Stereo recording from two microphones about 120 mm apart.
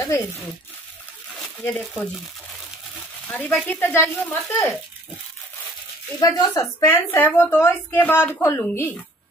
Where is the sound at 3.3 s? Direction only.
15° left (ahead or behind).